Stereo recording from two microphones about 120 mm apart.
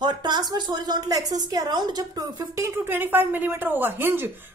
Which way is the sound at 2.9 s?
15° right (ahead or behind).